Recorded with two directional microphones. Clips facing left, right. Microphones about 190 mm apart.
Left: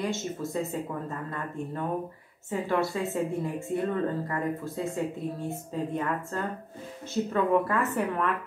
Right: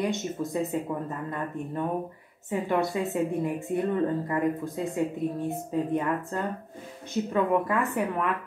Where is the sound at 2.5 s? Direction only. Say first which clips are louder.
Right 1 dB; 20° right (ahead or behind).